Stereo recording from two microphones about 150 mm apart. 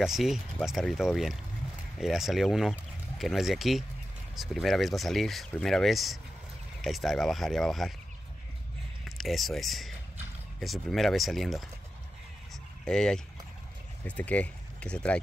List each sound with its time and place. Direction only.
0.0 s speech: centre (ahead or behind)
9.2 s speech: centre (ahead or behind)
12.8 s speech: 5° left (ahead or behind)